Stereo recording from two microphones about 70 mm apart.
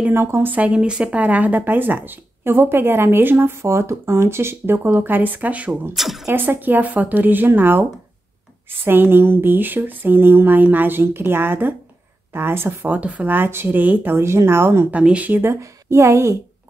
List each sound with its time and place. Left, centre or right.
0.1 s speech: right; by 5.8 s centre
5.9 s a woman's voice: centre
6.3 s speech: right
8.8 s speech: right
12.9 s speech: right
14.9 s speech: centre; by 16.3 s right